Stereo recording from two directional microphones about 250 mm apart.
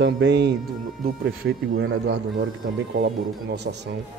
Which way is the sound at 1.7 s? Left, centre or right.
Right.